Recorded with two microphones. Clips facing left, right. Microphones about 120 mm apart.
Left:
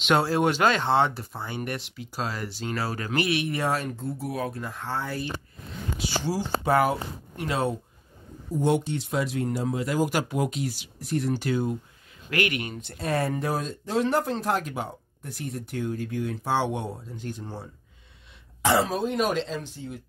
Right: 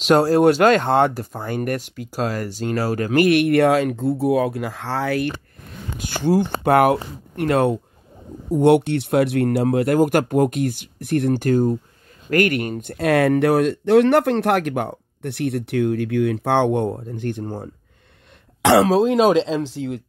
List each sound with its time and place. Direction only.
0.0 s speech: 40° right (ahead or behind); by 5.3 s 85° right
5.9 s speech: 50° right (ahead or behind)
13.0 s speech: 75° right (ahead or behind); by 17.6 s 50° right (ahead or behind)
18.6 s speech: 85° right